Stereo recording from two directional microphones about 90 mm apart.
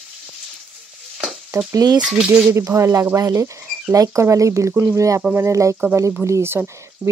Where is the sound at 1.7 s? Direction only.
45° right (ahead or behind).